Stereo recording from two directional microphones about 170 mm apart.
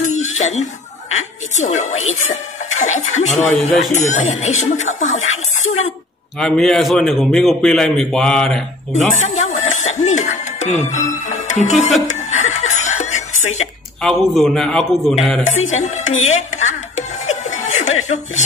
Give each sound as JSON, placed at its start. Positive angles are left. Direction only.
{"t": 0.0, "sound": "a sound", "side_deg": 45}
{"t": 1.6, "sound": "speech", "side_deg": 45}
{"t": 6.4, "sound": "a man's voice", "side_deg": 5}
{"t": 8.9, "sound": "speech", "side_deg": 45}
{"t": 12.1, "sound": "chuckle", "side_deg": 45}
{"t": 14.0, "sound": "a man's voice", "side_deg": 0}
{"t": 15.7, "sound": "speech", "side_deg": 45}
{"t": 17.3, "sound": "chuckle", "side_deg": 45}